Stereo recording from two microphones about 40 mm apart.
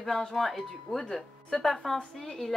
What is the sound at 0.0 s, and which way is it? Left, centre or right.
Speech, centre.